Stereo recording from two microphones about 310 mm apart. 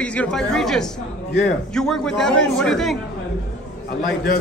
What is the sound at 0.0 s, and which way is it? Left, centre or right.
Speech, centre.